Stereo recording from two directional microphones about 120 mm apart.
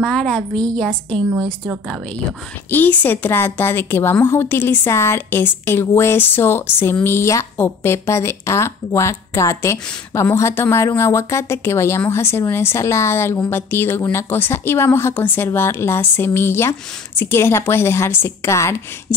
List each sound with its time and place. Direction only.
0.0 s a woman's voice: 5° left (ahead or behind)
2.7 s a woman's voice: 15° left (ahead or behind)